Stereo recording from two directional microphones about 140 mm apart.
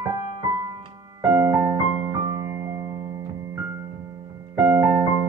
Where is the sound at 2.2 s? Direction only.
40° right (ahead or behind).